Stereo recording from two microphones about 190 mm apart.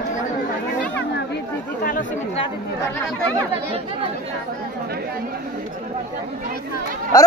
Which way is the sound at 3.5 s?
30° right (ahead or behind).